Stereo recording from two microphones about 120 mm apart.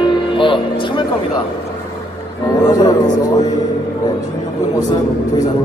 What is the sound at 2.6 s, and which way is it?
Speech, 35° left (ahead or behind).